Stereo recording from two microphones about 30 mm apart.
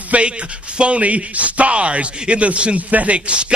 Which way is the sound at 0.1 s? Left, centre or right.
Right.